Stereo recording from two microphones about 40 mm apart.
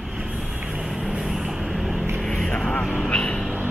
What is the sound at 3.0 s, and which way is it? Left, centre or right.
Speech, left.